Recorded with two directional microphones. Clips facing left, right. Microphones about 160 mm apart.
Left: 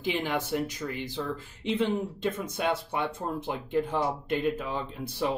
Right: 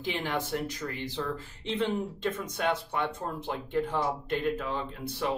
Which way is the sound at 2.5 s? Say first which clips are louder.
Left 1 dB; 15° left (ahead or behind).